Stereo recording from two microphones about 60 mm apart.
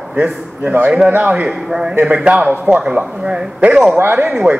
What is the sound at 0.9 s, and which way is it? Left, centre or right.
Speech, centre.